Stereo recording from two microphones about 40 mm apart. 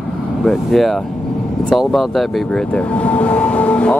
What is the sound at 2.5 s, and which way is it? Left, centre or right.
Speech, left.